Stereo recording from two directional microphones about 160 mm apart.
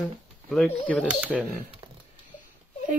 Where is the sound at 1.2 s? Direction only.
10° right (ahead or behind).